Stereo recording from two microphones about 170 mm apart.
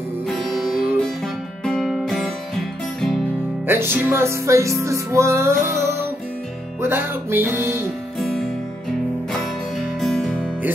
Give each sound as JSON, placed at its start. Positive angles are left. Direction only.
{"t": 0.4, "sound": "music", "side_deg": 0}
{"t": 3.6, "sound": "music", "side_deg": -15}
{"t": 6.8, "sound": "music", "side_deg": -15}
{"t": 8.2, "sound": "music", "side_deg": 0}
{"t": 9.9, "sound": "music", "side_deg": 0}